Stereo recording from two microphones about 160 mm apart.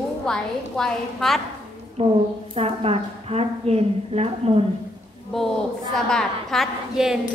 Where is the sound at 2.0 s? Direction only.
40° right (ahead or behind).